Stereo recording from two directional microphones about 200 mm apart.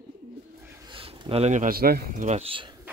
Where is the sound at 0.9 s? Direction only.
25° right (ahead or behind).